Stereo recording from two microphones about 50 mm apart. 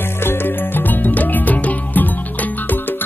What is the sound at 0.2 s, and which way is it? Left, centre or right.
Music, left.